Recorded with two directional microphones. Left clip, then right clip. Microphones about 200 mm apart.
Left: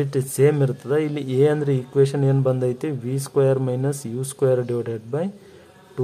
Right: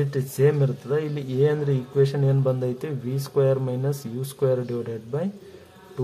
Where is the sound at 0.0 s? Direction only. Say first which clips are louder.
Left 3 dB; 30° left (ahead or behind).